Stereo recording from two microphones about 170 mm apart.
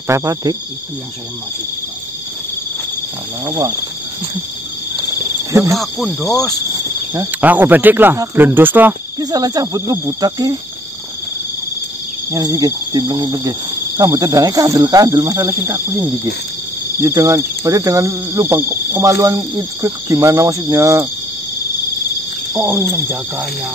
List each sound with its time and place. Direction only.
0.1 s speech: 20° right (ahead or behind)
3.4 s speech: 20° right (ahead or behind)
5.7 s speech: centre (ahead or behind)
7.2 s speech: 10° right (ahead or behind)
9.2 s speech: 20° right (ahead or behind)
12.3 s speech: 20° right (ahead or behind)
22.5 s speech: 15° right (ahead or behind)